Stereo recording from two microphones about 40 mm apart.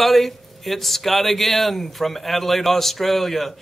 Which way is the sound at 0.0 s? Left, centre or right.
Centre.